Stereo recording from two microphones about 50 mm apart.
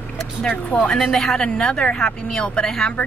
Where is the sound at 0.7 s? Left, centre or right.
Centre.